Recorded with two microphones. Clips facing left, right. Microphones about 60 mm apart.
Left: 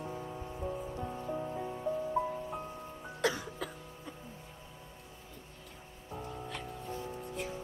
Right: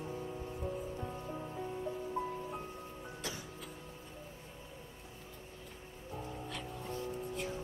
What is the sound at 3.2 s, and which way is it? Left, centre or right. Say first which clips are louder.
Music: left 14 dB; left.